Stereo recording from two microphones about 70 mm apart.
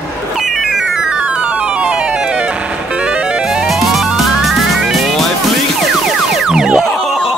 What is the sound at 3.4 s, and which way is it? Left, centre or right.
Music, centre.